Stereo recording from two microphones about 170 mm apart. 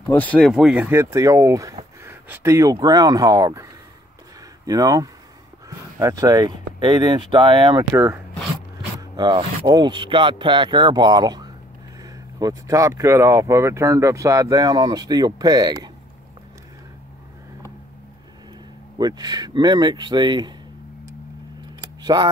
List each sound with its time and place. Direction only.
0.1 s speech: 10° left (ahead or behind); by 3.6 s 20° right (ahead or behind)
4.6 s speech: 20° right (ahead or behind)
7.9 s speech: 15° right (ahead or behind)
9.1 s speech: 25° right (ahead or behind)
18.9 s speech: 25° right (ahead or behind)
22.0 s speech: 25° right (ahead or behind)